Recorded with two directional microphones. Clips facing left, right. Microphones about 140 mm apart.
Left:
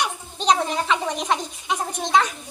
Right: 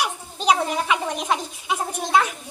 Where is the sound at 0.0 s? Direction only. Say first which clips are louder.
Even; 5° right (ahead or behind).